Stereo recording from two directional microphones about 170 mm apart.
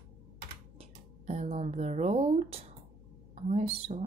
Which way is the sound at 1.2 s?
40° right (ahead or behind).